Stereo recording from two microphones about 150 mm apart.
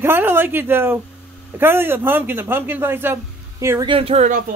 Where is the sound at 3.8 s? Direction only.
40° right (ahead or behind).